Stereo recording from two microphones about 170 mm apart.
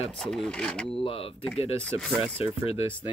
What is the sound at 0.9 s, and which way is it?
Speech, 35° left (ahead or behind).